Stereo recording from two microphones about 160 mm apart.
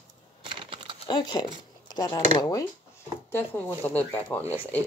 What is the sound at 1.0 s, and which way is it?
Speech, 25° left (ahead or behind).